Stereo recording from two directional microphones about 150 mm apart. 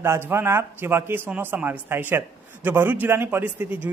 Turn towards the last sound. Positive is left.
turn(degrees=-15)  # may be behind; listen again after turning